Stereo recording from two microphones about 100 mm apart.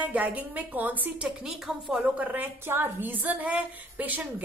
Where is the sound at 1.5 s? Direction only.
5° right (ahead or behind).